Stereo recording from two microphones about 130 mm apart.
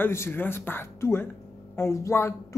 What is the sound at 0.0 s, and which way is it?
Speech, 20° left (ahead or behind).